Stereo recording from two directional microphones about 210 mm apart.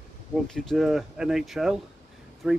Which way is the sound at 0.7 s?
Centre (ahead or behind).